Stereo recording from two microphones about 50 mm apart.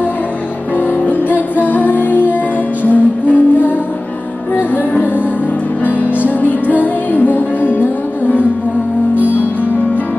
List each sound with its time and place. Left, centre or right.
0.7 s music: left
5.9 s music: left